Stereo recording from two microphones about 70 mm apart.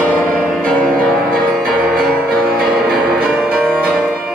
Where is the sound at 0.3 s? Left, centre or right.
Right.